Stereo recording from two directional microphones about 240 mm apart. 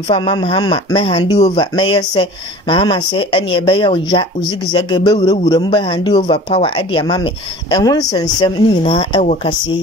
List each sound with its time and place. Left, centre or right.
0.1 s a man's voice: left